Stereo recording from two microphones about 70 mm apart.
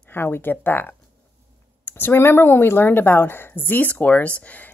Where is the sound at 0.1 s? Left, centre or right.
Left.